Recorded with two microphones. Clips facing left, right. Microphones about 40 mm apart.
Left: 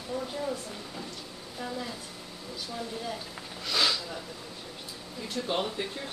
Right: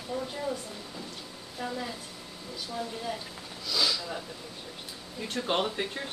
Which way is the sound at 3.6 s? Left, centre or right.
Left.